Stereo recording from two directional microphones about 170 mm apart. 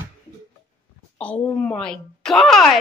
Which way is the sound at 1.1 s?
10° left (ahead or behind).